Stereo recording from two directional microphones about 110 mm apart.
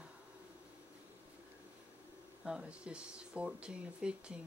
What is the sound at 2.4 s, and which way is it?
Speech, 10° right (ahead or behind).